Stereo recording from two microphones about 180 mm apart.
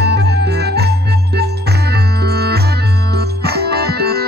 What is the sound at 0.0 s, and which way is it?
Music, 65° right (ahead or behind).